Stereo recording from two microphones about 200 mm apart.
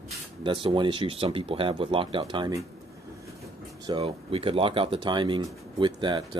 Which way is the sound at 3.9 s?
30° right (ahead or behind).